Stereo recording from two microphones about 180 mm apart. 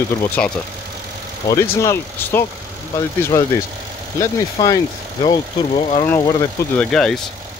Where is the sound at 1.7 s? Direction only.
15° left (ahead or behind).